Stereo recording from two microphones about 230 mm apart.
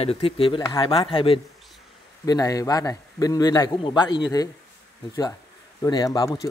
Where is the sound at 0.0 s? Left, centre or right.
Left.